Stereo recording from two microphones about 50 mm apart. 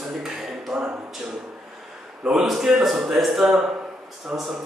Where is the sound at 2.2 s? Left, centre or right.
Centre.